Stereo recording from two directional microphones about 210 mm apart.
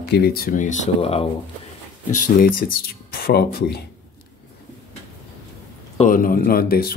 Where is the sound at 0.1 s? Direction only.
50° left (ahead or behind).